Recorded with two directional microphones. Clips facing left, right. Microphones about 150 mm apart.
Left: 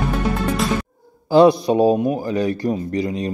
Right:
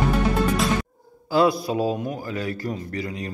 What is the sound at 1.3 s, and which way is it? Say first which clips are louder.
Speech: left 7 dB; 20° left (ahead or behind).